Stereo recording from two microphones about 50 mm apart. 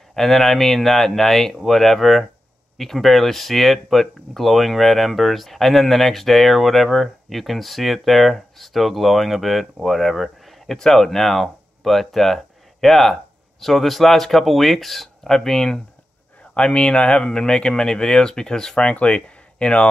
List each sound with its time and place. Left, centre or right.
0.1 s speech: centre
18.9 s speech: left